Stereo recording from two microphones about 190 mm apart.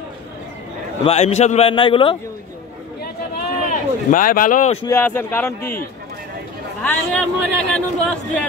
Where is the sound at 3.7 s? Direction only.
45° left (ahead or behind).